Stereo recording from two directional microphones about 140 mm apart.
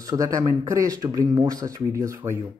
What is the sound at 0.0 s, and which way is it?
A man's voice, 25° right (ahead or behind).